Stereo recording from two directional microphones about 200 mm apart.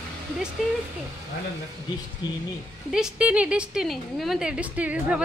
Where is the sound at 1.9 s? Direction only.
20° left (ahead or behind).